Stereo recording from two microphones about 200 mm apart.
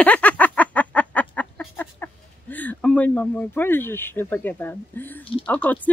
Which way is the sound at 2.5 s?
10° left (ahead or behind).